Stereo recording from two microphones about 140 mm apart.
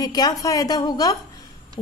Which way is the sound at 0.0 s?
25° left (ahead or behind).